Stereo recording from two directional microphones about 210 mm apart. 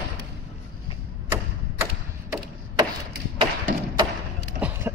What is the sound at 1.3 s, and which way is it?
Mechanisms, 15° right (ahead or behind).